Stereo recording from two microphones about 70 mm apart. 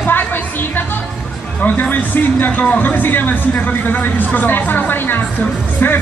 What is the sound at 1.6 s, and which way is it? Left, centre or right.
A man's voice, left.